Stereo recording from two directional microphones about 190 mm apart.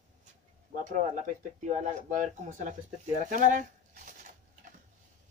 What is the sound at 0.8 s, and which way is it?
Speech, 45° right (ahead or behind).